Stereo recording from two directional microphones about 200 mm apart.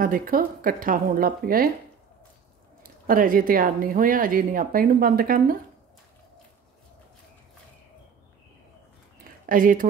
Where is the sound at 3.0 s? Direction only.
45° right (ahead or behind).